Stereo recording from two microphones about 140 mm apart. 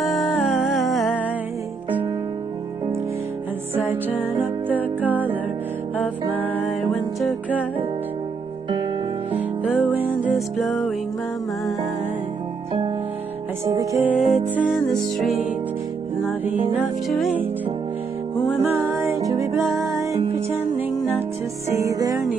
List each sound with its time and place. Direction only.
0.0 s music: centre (ahead or behind)
3.8 s music: 15° right (ahead or behind)
5.9 s music: 10° left (ahead or behind)
6.8 s music: centre (ahead or behind)
9.3 s music: 10° right (ahead or behind)
10.3 s music: centre (ahead or behind)
13.7 s music: 25° right (ahead or behind)
14.0 s music: centre (ahead or behind)
14.9 s music: centre (ahead or behind)
18.6 s music: 15° right (ahead or behind)
21.6 s music: 20° right (ahead or behind)